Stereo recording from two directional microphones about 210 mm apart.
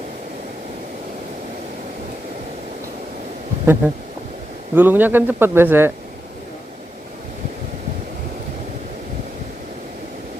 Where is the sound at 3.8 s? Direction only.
10° right (ahead or behind).